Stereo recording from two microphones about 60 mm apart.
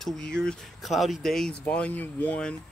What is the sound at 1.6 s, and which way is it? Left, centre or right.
Speech, left.